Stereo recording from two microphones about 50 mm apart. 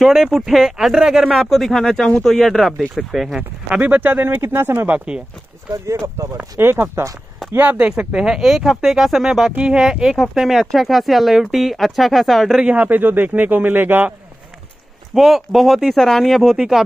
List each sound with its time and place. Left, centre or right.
0.0 s speech: centre
3.7 s speech: right
4.8 s speech: right
6.3 s speech: right
7.9 s speech: centre
12.6 s speech: right
15.1 s speech: centre
16.5 s speech: centre